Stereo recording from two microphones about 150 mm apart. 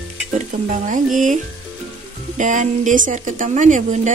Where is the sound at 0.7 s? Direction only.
60° right (ahead or behind).